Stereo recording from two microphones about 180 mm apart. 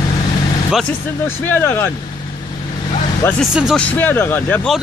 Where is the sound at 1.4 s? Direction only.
10° left (ahead or behind).